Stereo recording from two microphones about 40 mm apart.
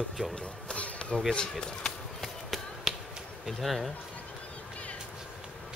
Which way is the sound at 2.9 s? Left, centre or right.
Centre.